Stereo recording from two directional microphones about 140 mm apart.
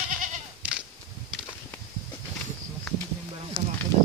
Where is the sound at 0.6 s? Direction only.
5° right (ahead or behind).